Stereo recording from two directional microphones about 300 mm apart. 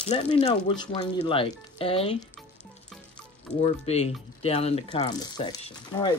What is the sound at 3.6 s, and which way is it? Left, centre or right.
Speech, left.